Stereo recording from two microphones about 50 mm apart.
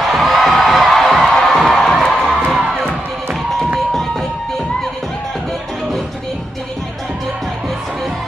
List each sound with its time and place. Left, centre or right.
0.1 s music: centre
2.6 s crowd: centre